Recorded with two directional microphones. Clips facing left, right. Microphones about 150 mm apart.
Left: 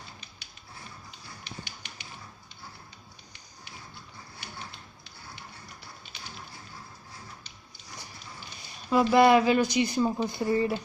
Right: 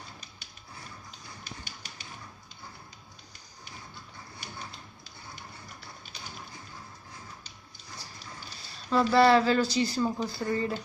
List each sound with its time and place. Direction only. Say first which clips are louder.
1.4 s finger snapping: left 2 dB; 40° right (ahead or behind)
8.8 s speech: left 2 dB; 10° left (ahead or behind)